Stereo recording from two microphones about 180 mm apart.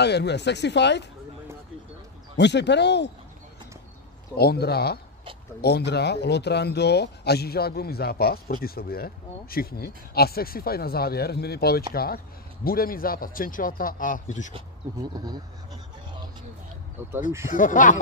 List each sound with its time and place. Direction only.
0.0 s speech: 70° left (ahead or behind)
2.3 s speech: 70° left (ahead or behind)
4.4 s a man's voice: 60° left (ahead or behind); by 14.5 s 45° left (ahead or behind)
14.5 s speech: 20° right (ahead or behind)
17.5 s a man's voice: 45° left (ahead or behind)